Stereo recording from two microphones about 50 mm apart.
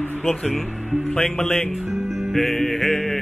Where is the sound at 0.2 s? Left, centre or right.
Centre.